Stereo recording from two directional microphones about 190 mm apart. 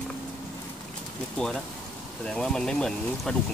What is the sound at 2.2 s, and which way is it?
Speech, 5° left (ahead or behind).